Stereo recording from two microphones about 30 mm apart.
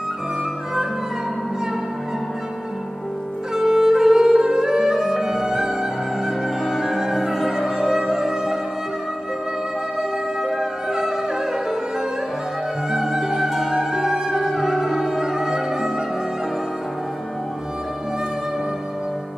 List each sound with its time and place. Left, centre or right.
3.5 s music: centre
10.4 s music: centre
12.9 s music: centre